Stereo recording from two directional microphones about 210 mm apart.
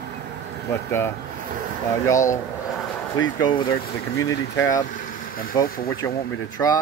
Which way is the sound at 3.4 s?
20° left (ahead or behind).